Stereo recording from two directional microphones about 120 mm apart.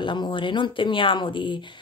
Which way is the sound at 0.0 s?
40° left (ahead or behind).